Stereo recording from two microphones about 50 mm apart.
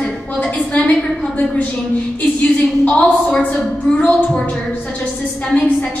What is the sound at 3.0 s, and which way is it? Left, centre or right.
A woman's voice, left.